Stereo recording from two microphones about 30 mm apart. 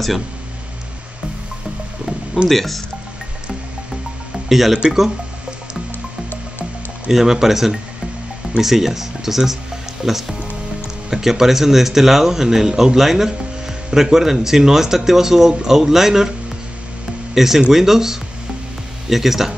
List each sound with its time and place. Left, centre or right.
2.5 s speech: centre
4.5 s speech: centre
7.1 s speech: centre
17.3 s speech: centre